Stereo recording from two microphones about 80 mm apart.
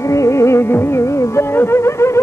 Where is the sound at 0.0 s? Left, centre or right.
Left.